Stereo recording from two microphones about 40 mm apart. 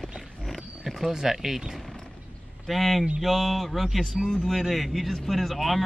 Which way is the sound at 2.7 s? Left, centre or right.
Centre.